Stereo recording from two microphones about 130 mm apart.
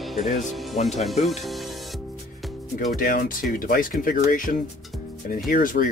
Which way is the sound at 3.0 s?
90° left.